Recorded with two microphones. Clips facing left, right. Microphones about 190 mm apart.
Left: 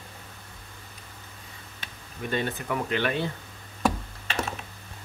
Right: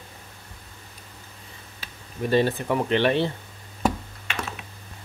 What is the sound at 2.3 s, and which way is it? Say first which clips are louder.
Speech: right 7 dB; 30° right (ahead or behind).